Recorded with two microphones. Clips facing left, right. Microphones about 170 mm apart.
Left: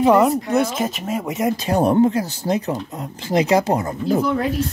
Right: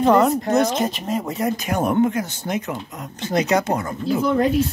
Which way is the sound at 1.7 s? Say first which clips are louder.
Left 4 dB; 35° left (ahead or behind).